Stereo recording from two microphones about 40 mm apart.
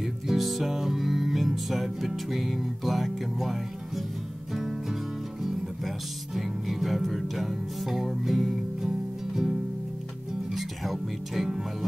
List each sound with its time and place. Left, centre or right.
0.0 s music: centre
5.4 s music: centre